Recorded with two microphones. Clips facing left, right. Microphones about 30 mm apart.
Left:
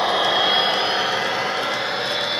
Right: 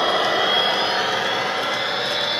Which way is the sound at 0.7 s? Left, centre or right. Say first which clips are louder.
Even; centre.